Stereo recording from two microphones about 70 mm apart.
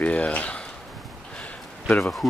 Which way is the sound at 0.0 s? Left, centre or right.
Centre.